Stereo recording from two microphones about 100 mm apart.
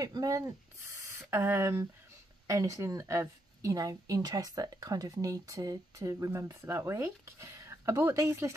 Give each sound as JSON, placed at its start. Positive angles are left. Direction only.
{"t": 0.0, "sound": "speech", "side_deg": -40}